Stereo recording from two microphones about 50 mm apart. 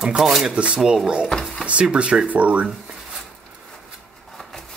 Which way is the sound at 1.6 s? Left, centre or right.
Right.